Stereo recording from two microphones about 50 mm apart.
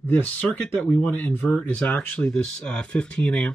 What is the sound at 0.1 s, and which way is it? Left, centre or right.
Speech, left.